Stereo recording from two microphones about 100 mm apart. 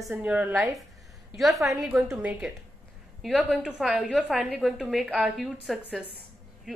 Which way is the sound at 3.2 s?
Centre (ahead or behind).